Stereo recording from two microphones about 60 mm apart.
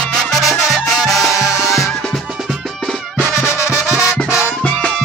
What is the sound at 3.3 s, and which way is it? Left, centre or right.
Music, left.